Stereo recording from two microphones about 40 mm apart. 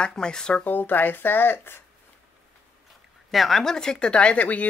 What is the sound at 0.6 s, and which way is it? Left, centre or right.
Speech, left.